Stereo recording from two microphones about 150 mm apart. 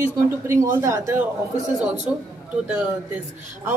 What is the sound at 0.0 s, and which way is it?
A woman's voice, 15° right (ahead or behind).